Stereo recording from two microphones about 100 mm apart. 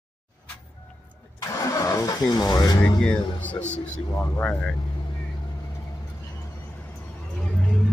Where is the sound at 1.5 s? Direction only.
35° left (ahead or behind).